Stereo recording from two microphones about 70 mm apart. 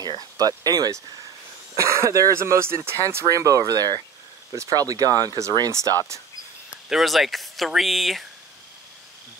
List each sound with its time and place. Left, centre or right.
0.4 s speech: right
1.8 s speech: right
3.3 s speech: right
5.7 s speech: right
6.7 s speech: centre